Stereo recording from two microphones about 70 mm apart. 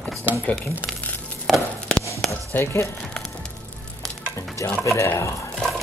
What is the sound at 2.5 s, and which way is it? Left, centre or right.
Speech, left.